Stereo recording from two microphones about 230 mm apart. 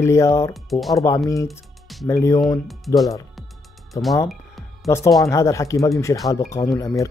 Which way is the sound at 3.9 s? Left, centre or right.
Centre.